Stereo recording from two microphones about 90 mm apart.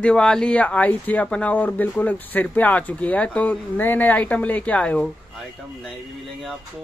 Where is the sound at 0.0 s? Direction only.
10° left (ahead or behind).